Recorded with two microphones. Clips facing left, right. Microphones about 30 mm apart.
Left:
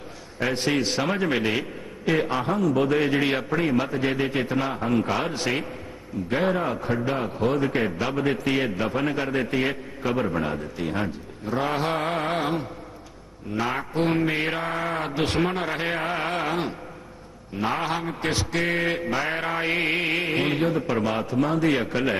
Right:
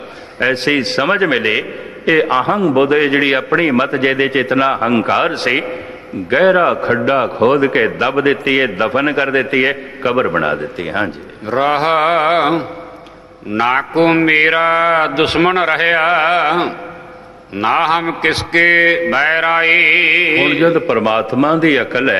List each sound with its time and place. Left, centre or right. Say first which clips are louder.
0.4 s a man's voice: right 9 dB; right